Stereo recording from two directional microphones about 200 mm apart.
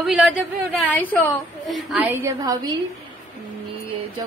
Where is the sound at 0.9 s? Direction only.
10° left (ahead or behind); by 2.3 s 10° right (ahead or behind).